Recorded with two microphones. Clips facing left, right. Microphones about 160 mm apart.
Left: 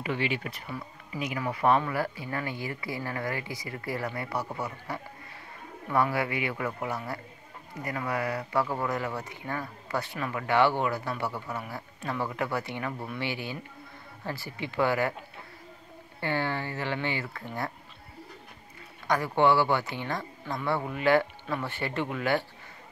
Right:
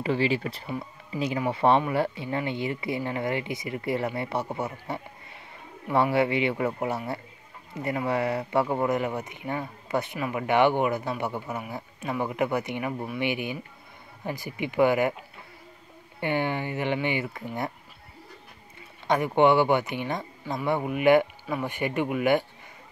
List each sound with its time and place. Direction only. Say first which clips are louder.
0.0 s speech: right 5 dB; 35° right (ahead or behind); by 15.1 s 15° right (ahead or behind)
16.2 s speech: right 3 dB; 20° right (ahead or behind)
19.0 s speech: right 3 dB; 20° right (ahead or behind)